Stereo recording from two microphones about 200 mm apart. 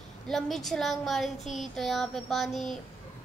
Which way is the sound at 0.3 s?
Centre (ahead or behind).